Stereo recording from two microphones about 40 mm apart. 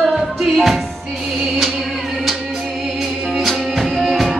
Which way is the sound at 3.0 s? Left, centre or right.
Centre.